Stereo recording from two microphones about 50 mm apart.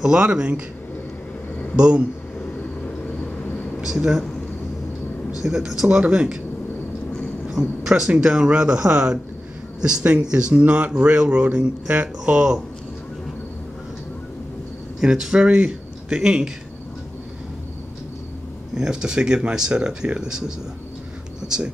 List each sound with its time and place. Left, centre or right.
0.0 s speech: centre
1.8 s speech: right
3.8 s speech: centre
5.4 s speech: centre
5.9 s speech: right
7.4 s a sound: centre
8.1 s speech: centre
15.0 s speech: centre
18.8 s speech: centre